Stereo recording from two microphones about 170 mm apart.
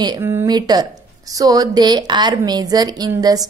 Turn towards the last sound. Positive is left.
turn(degrees=-20)  # may be behind; listen again after turning